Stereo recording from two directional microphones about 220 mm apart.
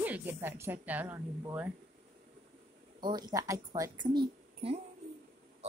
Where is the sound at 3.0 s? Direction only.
20° right (ahead or behind).